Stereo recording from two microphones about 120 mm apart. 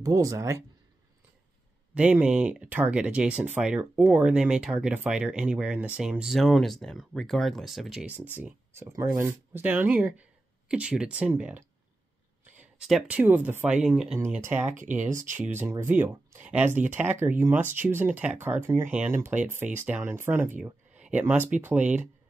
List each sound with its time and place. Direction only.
0.0 s speech: 25° right (ahead or behind)
2.0 s speech: 10° right (ahead or behind)
8.1 s speech: 15° right (ahead or behind)
12.7 s speech: 5° right (ahead or behind)
14.9 s speech: 90° right
15.2 s speech: 15° right (ahead or behind)